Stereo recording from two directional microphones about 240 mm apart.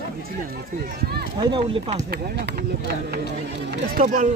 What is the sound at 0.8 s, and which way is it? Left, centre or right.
Speech, right.